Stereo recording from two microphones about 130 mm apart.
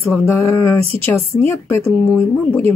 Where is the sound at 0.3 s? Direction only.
20° left (ahead or behind).